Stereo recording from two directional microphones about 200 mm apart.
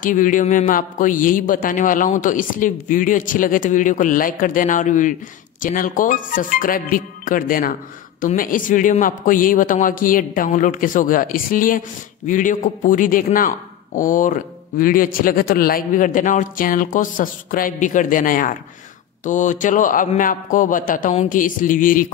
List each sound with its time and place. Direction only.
0.0 s a man's voice: 40° left (ahead or behind)